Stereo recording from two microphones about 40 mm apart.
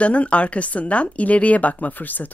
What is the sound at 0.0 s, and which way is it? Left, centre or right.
Speech, left.